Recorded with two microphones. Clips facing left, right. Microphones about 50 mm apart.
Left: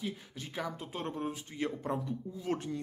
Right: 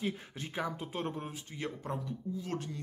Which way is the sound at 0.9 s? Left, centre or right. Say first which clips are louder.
Left 1 dB; centre.